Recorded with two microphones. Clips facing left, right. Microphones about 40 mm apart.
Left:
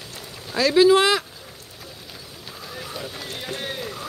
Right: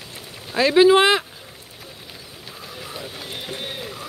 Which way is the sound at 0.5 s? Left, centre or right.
Right.